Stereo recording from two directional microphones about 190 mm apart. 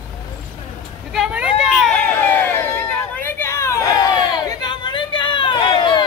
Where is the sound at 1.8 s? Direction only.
5° left (ahead or behind); by 6.0 s 25° left (ahead or behind).